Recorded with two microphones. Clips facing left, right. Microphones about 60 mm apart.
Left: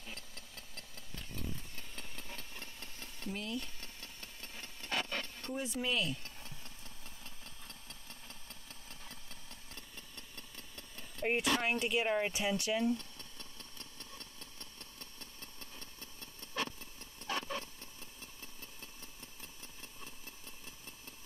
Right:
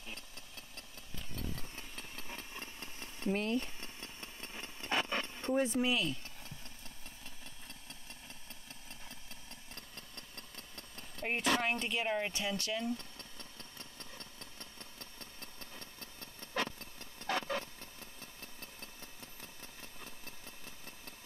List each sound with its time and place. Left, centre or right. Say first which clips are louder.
1.8 s engine: right 1 dB; centre
3.3 s speech: right 7 dB; right
3.8 s engine: right 3 dB; right
5.5 s speech: right 9 dB; right
9.8 s engine: even; right
11.1 s vehicle: left 4 dB; centre
11.6 s speech: left 2 dB; centre
15.6 s engine: right 2 dB; right
16.5 s vehicle: right 2 dB; right
18.4 s engine: right 2 dB; right